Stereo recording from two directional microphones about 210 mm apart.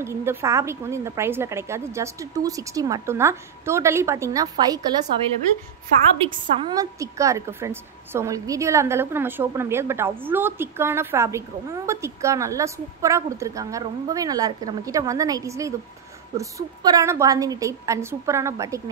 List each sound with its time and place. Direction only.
0.0 s a woman's voice: 10° right (ahead or behind)
6.2 s a woman's voice: 20° right (ahead or behind)